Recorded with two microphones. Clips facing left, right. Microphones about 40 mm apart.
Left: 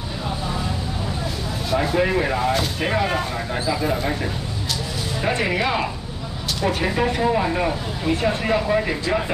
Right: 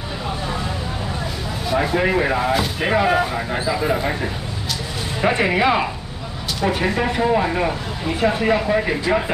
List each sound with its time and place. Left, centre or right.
1.7 s speech: centre